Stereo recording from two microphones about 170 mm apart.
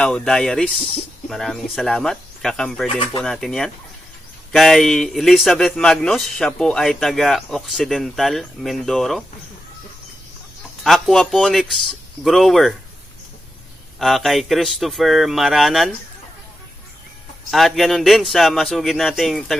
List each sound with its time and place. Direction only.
0.0 s speech: 5° left (ahead or behind)
3.0 s speech: 25° left (ahead or behind)
3.3 s speech: 5° left (ahead or behind)
10.8 s speech: centre (ahead or behind)
13.9 s speech: centre (ahead or behind)
17.5 s speech: centre (ahead or behind)